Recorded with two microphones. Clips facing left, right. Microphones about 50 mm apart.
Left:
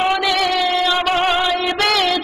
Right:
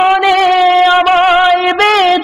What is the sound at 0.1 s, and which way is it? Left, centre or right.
Music, right.